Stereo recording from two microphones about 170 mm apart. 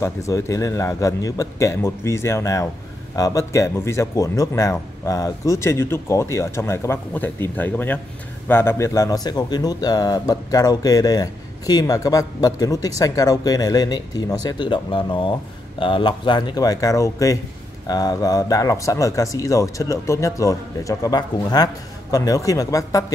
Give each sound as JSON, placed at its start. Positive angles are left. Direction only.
{"t": 0.0, "sound": "speech", "side_deg": 20}